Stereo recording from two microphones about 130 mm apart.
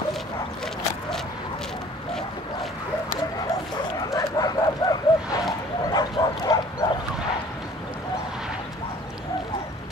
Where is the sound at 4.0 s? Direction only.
30° left (ahead or behind).